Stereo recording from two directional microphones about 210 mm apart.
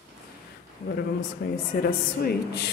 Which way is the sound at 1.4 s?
45° left (ahead or behind).